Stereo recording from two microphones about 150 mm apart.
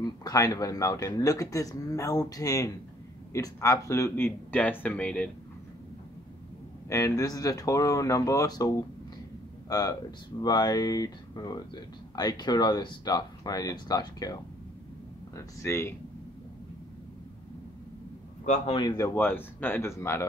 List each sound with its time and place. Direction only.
0.0 s speech: 25° left (ahead or behind); by 5.3 s 10° left (ahead or behind)
6.9 s speech: 20° left (ahead or behind)
18.4 s a man's voice: 50° left (ahead or behind)
18.8 s speech: 25° left (ahead or behind)